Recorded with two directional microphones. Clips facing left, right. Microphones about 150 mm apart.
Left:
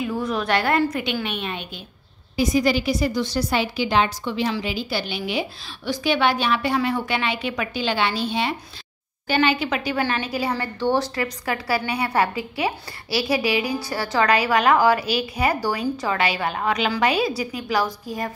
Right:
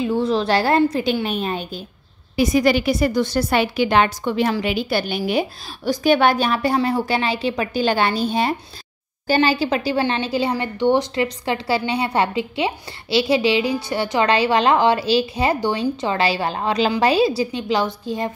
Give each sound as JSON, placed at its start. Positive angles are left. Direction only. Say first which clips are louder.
{"t": 0.0, "sound": "a woman's voice", "louder": "right 5 dB", "side_deg": -30}
{"t": 2.3, "sound": "a woman's voice", "louder": "right 3 dB", "side_deg": -65}